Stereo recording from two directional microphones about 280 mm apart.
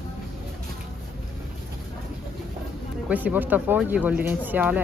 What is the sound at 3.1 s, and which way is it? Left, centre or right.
Speech, centre.